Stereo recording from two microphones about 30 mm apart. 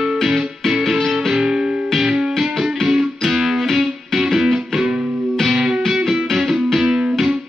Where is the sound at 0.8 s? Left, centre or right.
Centre.